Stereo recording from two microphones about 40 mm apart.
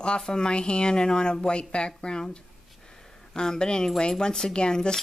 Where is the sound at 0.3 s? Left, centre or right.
Centre.